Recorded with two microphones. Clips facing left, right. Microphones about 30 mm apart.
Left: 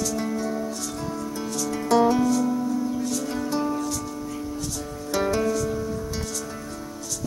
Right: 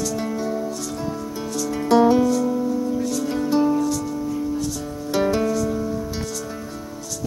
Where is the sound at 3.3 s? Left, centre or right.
Centre.